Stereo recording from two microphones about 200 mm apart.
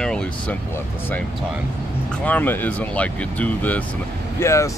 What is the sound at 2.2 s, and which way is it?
Speech, 10° left (ahead or behind).